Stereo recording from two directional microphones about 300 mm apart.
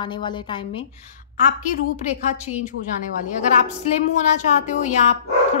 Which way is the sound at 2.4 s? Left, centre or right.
Left.